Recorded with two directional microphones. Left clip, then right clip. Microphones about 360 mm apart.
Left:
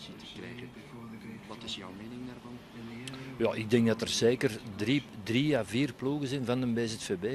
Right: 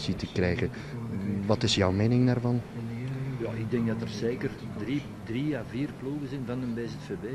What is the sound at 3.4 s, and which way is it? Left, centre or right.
Speech, left.